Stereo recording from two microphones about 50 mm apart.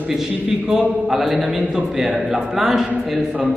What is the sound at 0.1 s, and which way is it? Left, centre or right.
A man's voice, centre.